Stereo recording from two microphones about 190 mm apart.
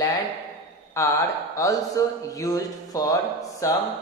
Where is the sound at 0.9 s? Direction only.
15° left (ahead or behind).